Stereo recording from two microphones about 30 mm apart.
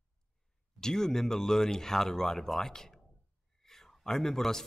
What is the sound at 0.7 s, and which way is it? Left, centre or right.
A man's voice, centre.